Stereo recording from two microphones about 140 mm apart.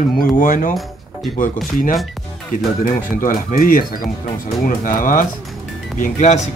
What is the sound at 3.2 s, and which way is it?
Speech, 85° left.